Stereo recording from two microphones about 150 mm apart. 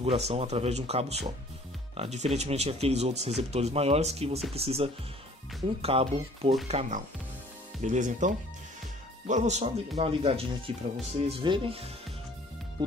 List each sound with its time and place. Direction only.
0.0 s speech: 45° right (ahead or behind)
7.8 s speech: 55° right (ahead or behind); by 11.9 s 40° right (ahead or behind)